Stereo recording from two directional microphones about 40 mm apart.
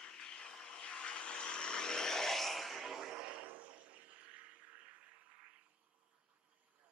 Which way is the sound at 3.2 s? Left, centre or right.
Right.